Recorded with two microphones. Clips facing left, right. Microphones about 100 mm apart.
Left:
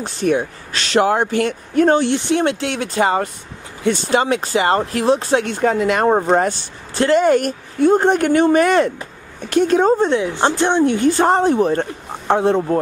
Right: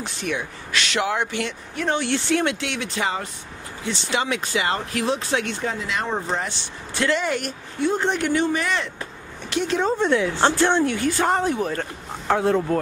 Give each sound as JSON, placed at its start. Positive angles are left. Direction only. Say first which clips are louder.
{"t": 0.0, "sound": "speech", "louder": "left 10 dB", "side_deg": 35}
{"t": 2.0, "sound": "speech", "louder": "left 4 dB", "side_deg": 20}
{"t": 2.4, "sound": "speech", "louder": "left 6 dB", "side_deg": 35}
{"t": 5.6, "sound": "speech", "louder": "left 11 dB", "side_deg": 55}
{"t": 10.0, "sound": "speech", "louder": "left 2 dB", "side_deg": 20}